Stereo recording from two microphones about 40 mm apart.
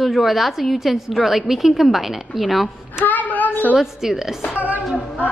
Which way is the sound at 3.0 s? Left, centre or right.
Left.